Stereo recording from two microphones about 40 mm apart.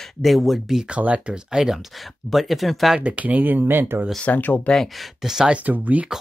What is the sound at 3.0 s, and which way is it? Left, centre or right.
Speech, right.